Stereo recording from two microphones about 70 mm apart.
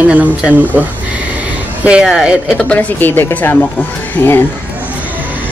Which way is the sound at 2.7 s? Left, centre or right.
Left.